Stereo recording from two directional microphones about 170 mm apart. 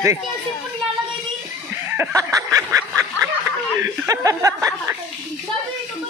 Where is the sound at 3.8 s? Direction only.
20° right (ahead or behind).